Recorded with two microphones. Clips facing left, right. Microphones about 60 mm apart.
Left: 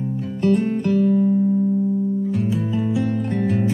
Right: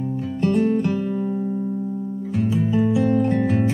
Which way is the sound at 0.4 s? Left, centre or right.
Centre.